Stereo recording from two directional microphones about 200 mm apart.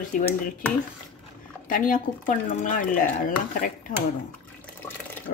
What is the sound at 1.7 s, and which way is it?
Speech, 40° left (ahead or behind).